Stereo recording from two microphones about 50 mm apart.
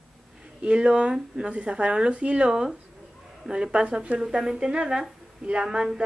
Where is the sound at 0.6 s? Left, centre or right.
Centre.